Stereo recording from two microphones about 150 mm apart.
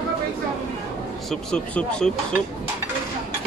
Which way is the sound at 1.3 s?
5° left (ahead or behind).